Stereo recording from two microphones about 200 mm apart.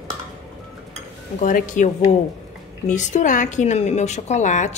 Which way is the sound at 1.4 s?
40° left (ahead or behind).